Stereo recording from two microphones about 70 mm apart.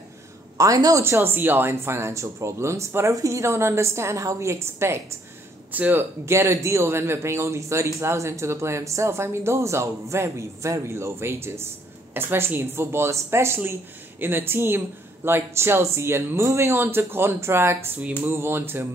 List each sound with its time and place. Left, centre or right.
0.6 s a woman's voice: right
1.0 s a man's voice: right
5.7 s speech: right
6.2 s a man's voice: right